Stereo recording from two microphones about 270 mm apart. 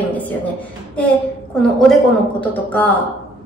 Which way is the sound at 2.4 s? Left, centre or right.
Centre.